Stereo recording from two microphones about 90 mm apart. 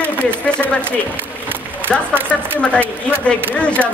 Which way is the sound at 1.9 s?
20° right (ahead or behind).